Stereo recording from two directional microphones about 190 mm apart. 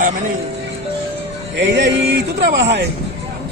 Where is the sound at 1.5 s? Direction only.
70° right (ahead or behind).